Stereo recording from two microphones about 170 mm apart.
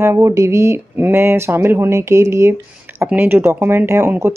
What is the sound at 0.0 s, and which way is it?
Speech, 15° right (ahead or behind).